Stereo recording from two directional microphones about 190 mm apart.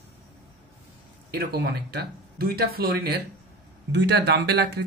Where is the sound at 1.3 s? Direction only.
55° right (ahead or behind).